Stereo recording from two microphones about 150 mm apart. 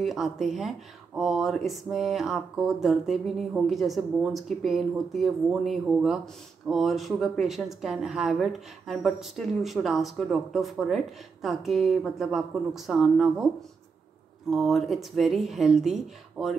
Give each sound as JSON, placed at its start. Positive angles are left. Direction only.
{"t": 0.0, "sound": "speech", "side_deg": 0}
{"t": 14.5, "sound": "speech", "side_deg": 0}